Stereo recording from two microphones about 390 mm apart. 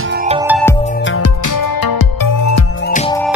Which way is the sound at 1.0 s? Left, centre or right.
Left.